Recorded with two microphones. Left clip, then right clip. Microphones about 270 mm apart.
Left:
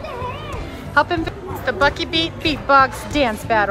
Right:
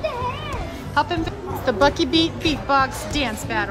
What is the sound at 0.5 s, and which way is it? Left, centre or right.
A woman's voice, centre.